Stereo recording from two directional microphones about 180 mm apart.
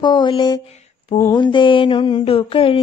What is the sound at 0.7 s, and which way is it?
Mantra, 35° left (ahead or behind).